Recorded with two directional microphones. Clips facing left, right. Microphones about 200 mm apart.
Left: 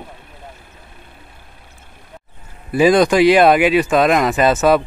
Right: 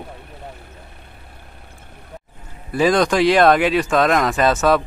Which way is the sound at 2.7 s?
10° left (ahead or behind).